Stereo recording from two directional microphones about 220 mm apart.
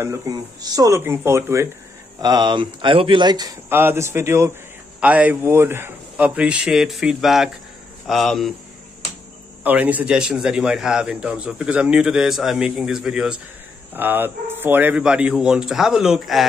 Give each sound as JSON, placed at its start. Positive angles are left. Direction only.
{"t": 0.0, "sound": "a man's voice", "side_deg": -15}
{"t": 9.6, "sound": "a man's voice", "side_deg": -5}